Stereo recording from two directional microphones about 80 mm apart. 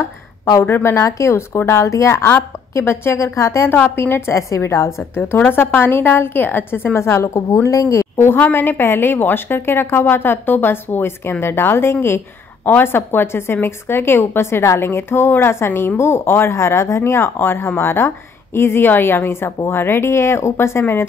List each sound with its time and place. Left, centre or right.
0.7 s a woman's voice: left